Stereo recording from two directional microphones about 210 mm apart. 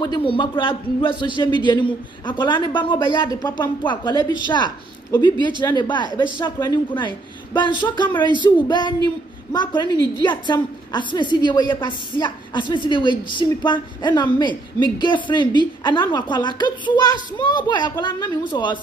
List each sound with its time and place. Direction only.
0.0 s a woman's voice: 25° left (ahead or behind)